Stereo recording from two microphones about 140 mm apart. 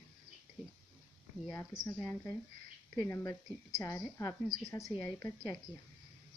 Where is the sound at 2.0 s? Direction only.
15° left (ahead or behind).